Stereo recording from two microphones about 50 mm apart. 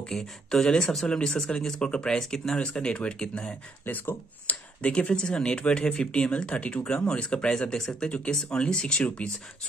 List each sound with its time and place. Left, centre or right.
0.1 s speech: centre
3.8 s speech: left
4.5 s speech: left